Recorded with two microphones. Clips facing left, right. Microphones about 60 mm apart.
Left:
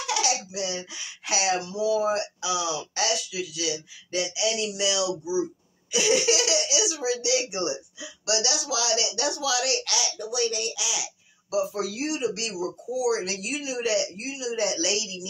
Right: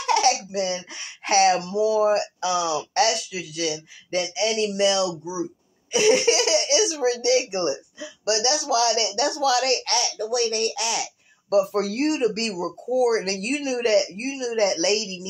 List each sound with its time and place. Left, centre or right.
0.0 s speech: right